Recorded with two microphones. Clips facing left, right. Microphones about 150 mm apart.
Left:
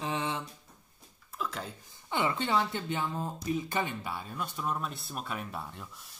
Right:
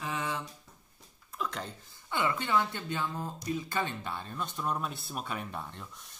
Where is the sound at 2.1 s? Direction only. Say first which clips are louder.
Left 1 dB; 20° left (ahead or behind).